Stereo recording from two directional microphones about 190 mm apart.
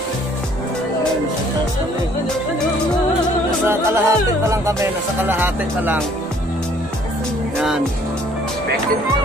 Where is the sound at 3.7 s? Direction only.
15° right (ahead or behind).